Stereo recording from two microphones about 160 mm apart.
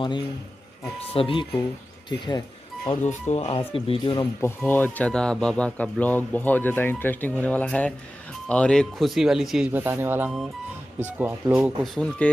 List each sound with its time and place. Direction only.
0.9 s speech: 35° left (ahead or behind)
3.1 s speech: 45° left (ahead or behind)
4.6 s speech: 10° left (ahead or behind); by 11.7 s 10° right (ahead or behind)
11.8 s speech: 5° left (ahead or behind)